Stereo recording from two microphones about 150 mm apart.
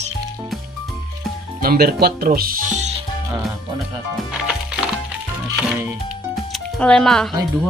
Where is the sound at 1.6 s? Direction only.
80° right; by 2.9 s 55° right (ahead or behind).